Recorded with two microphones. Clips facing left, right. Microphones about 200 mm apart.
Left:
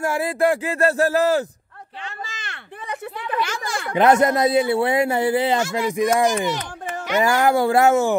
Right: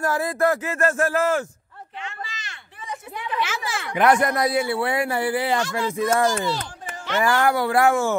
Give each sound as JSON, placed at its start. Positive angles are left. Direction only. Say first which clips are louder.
{"t": 0.0, "sound": "speech", "louder": "left 2 dB", "side_deg": 25}
{"t": 2.2, "sound": "a sound", "louder": "left 3 dB", "side_deg": 55}
{"t": 3.3, "sound": "speech", "louder": "left 1 dB", "side_deg": -5}
{"t": 3.9, "sound": "speech", "louder": "left 3 dB", "side_deg": 25}
{"t": 5.6, "sound": "speech", "louder": "left 3 dB", "side_deg": 10}